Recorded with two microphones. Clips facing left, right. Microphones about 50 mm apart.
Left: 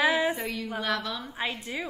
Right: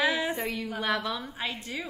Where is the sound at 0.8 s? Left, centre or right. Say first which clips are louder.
Right 2 dB; centre.